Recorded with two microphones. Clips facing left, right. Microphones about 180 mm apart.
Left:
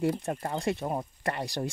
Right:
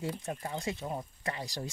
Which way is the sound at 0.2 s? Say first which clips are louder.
Left 5 dB; 60° left (ahead or behind).